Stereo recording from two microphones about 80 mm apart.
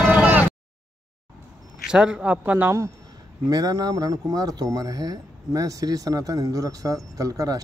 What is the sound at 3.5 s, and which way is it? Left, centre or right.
Speech, right.